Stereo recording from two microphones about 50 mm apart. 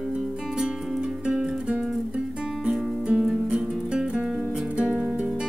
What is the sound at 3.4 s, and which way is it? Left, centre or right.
Music, centre.